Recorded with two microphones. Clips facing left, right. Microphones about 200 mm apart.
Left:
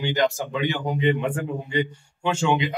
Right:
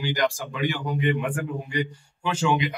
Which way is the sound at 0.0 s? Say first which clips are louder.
Left 3 dB; 25° left (ahead or behind).